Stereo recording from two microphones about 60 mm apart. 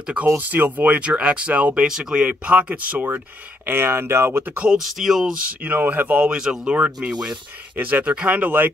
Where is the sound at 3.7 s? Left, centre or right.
Right.